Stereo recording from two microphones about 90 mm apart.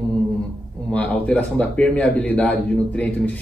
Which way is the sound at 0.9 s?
15° left (ahead or behind).